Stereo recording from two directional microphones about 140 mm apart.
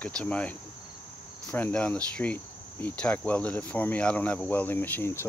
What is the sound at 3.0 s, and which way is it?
Cricket, 10° left (ahead or behind).